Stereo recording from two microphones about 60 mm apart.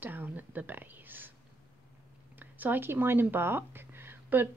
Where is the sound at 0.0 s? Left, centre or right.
Right.